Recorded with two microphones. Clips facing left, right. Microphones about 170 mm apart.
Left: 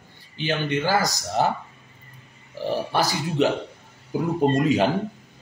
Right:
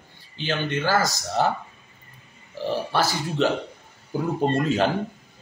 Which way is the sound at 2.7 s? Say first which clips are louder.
Even; 15° left (ahead or behind).